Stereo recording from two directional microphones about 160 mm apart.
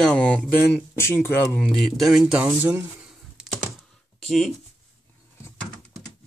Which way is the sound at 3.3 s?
Centre (ahead or behind).